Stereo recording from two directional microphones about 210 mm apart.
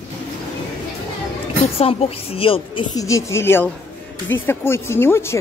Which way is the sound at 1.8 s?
30° left (ahead or behind).